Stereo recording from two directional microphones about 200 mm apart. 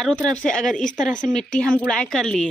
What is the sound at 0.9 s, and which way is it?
Speech, 40° left (ahead or behind).